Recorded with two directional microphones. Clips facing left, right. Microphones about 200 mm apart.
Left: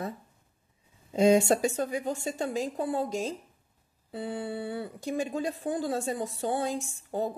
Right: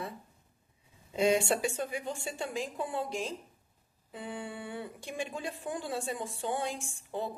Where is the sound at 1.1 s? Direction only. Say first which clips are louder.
Left 6 dB; 40° left (ahead or behind).